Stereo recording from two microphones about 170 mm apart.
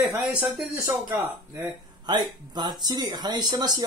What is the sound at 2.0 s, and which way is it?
Speech, 25° right (ahead or behind).